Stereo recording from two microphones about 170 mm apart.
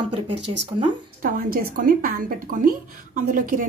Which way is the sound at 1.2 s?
55° right (ahead or behind).